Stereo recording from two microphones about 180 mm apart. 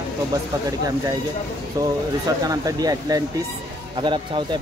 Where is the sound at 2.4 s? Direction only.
20° right (ahead or behind).